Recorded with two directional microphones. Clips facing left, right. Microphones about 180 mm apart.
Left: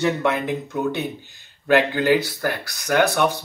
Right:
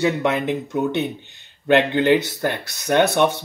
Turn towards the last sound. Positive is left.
turn(degrees=-25)  # may be behind; listen again after turning